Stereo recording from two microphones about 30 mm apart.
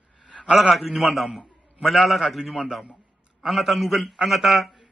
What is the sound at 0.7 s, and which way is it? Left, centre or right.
A man's voice, centre.